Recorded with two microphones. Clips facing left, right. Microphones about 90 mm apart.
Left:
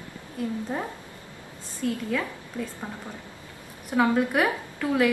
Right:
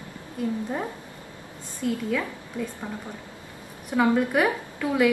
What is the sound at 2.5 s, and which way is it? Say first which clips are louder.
Speech: right 2 dB; 20° right (ahead or behind).